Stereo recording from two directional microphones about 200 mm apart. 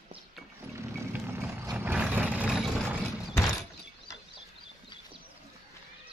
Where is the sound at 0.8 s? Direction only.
10° right (ahead or behind).